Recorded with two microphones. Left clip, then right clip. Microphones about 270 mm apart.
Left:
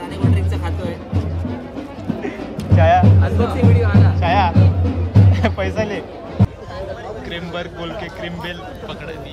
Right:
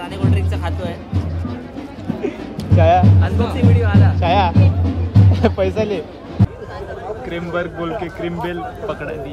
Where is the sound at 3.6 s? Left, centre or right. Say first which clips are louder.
Even; centre.